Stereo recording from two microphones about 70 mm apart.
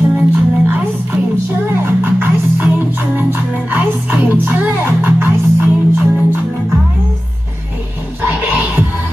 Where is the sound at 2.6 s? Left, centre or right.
Right.